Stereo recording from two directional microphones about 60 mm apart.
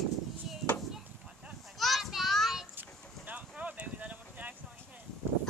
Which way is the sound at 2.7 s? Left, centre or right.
Right.